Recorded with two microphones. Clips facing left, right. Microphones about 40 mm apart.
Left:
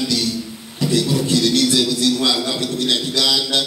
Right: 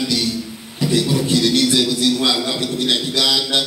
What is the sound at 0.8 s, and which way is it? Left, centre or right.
A man's voice, right.